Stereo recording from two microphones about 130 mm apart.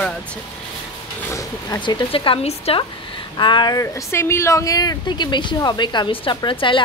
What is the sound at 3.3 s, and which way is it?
Speech, 35° left (ahead or behind).